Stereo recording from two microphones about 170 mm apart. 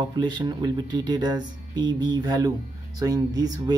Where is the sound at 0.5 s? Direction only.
25° right (ahead or behind).